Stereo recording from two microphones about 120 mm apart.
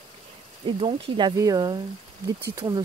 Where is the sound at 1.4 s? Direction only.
30° right (ahead or behind).